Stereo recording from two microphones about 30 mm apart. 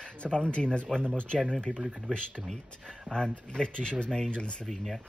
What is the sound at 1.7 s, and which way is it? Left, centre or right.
Speech, right.